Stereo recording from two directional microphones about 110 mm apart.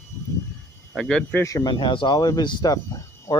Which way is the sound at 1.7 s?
45° left (ahead or behind).